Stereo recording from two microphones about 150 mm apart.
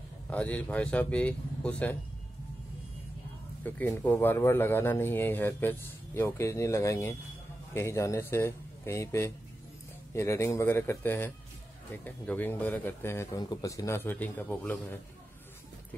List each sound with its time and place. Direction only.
0.3 s speech: 10° left (ahead or behind)
3.6 s speech: 10° left (ahead or behind)